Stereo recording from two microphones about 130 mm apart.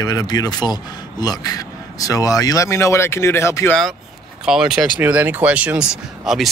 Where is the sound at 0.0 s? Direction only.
30° left (ahead or behind).